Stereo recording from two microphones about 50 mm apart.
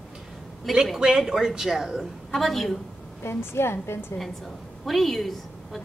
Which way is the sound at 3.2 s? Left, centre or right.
Left.